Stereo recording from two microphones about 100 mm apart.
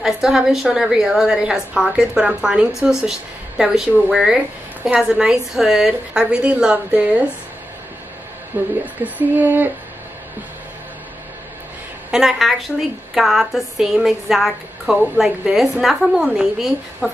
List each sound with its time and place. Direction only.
0.0 s a woman's voice: 5° right (ahead or behind)
8.5 s a woman's voice: 20° right (ahead or behind)
12.1 s a woman's voice: 5° right (ahead or behind)